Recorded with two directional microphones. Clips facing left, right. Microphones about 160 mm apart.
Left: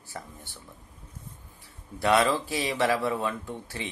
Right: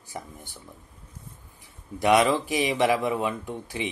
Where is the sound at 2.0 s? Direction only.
15° right (ahead or behind).